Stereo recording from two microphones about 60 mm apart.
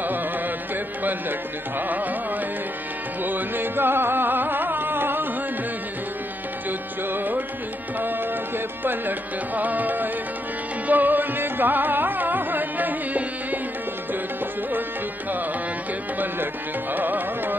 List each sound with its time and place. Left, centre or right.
1.8 s music: right
3.3 s music: right
7.1 s music: right
9.6 s music: right
16.9 s music: right